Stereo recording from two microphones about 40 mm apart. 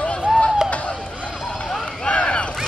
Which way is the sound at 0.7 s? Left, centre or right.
Left.